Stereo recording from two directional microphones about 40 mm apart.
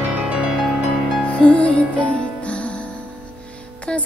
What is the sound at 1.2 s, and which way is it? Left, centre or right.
Music, left.